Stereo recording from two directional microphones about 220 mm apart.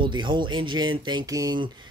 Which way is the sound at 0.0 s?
20° right (ahead or behind).